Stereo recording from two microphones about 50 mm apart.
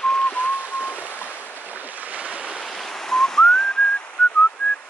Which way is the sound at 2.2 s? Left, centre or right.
Centre.